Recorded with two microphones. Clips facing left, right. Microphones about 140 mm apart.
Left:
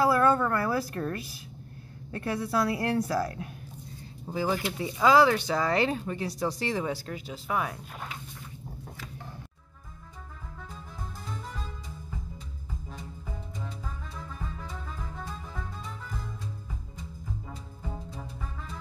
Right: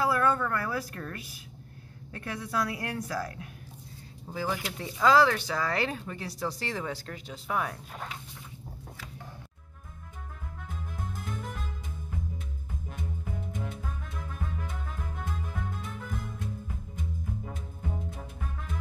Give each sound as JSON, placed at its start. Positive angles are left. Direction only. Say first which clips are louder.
{"t": 0.0, "sound": "a woman's voice", "louder": "left 4 dB", "side_deg": 35}
{"t": 4.3, "sound": "speech", "louder": "left 4 dB", "side_deg": 20}